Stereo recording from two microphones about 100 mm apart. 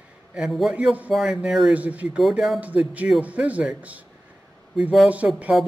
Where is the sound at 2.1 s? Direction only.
5° right (ahead or behind).